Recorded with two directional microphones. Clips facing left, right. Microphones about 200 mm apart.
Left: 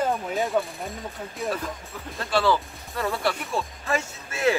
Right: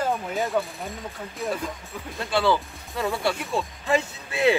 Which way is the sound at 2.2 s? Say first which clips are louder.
Even; 15° right (ahead or behind).